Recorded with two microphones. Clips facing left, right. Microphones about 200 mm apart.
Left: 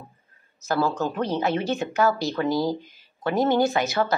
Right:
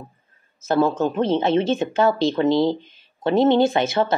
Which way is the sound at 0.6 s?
25° right (ahead or behind).